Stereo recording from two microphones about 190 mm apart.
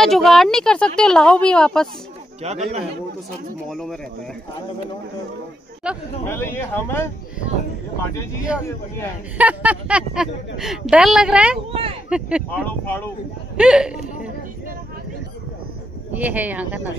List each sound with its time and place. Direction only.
0.0 s speech: centre (ahead or behind)
2.4 s a man's voice: 35° right (ahead or behind)
3.7 s speech: centre (ahead or behind)
5.9 s speech: 5° right (ahead or behind)
6.2 s speech: 10° left (ahead or behind)
9.4 s speech: 5° right (ahead or behind)
12.4 s speech: 10° left (ahead or behind)
13.6 s speech: 5° right (ahead or behind)
16.1 s speech: 10° right (ahead or behind)